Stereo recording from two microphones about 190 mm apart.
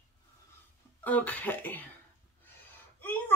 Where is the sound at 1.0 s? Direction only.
10° left (ahead or behind).